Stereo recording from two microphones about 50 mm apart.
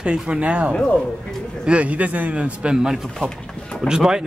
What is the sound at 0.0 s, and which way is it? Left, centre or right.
Speech, centre.